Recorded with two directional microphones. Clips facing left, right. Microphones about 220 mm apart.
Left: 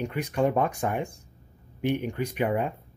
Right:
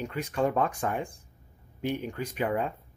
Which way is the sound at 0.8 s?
25° left (ahead or behind).